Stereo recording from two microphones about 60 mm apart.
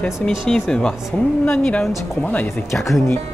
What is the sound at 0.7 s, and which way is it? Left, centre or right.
A woman's voice, centre.